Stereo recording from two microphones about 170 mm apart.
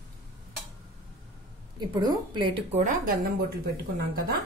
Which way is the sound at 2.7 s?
50° right (ahead or behind).